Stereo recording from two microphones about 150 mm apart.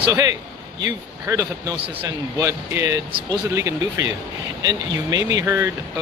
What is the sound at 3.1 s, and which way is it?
Speech, 35° right (ahead or behind).